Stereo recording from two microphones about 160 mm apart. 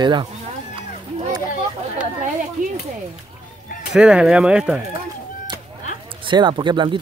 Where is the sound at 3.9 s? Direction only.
5° right (ahead or behind).